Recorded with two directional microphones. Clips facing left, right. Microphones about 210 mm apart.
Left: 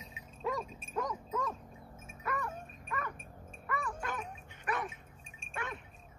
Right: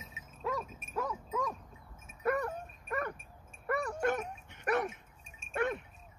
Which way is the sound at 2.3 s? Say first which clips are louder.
Right 5 dB; 40° right (ahead or behind).